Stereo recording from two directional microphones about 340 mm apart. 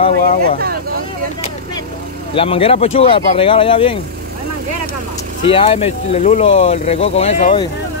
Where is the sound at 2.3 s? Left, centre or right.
Centre.